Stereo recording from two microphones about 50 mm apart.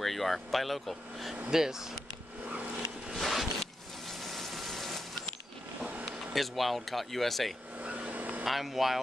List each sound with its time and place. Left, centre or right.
0.0 s speech: centre
1.5 s speech: centre
3.1 s a sound: centre
6.3 s speech: centre
7.8 s a sound: right
8.5 s speech: centre